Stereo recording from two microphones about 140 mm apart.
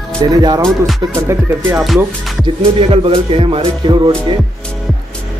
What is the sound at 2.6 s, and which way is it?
Music, 40° right (ahead or behind).